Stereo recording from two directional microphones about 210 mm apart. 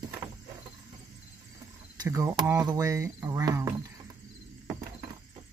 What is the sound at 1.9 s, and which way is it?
Speech, 15° right (ahead or behind).